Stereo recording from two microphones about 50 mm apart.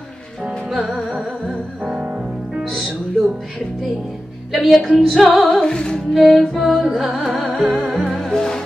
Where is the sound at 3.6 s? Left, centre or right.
Centre.